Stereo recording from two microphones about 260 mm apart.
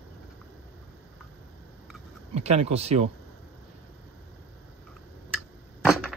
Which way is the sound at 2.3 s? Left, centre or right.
Right.